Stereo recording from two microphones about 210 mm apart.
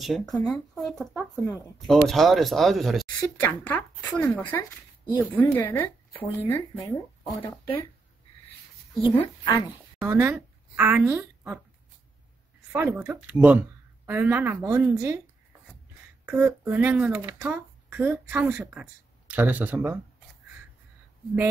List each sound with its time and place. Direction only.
0.0 s speech: centre (ahead or behind)
7.2 s speech: 20° left (ahead or behind)
9.2 s speech: 25° left (ahead or behind)
9.9 s a woman's voice: 10° right (ahead or behind)
12.7 s speech: 10° right (ahead or behind)
16.3 s speech: 10° right (ahead or behind)